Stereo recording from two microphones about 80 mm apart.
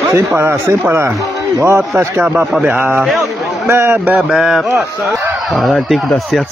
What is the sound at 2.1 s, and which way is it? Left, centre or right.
Speech, centre.